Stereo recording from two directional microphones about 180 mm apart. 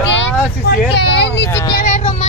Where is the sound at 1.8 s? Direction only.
40° left (ahead or behind).